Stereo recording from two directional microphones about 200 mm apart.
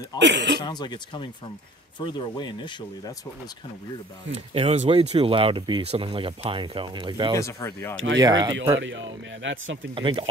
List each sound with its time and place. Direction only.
0.2 s speech: 60° right (ahead or behind)
0.6 s speech: 20° left (ahead or behind)
4.3 s speech: 30° right (ahead or behind)
7.3 s speech: 15° left (ahead or behind)
7.9 s speech: 75° right (ahead or behind)
8.2 s speech: 20° right (ahead or behind)
8.7 s speech: 70° right (ahead or behind)
9.9 s speech: 25° right (ahead or behind)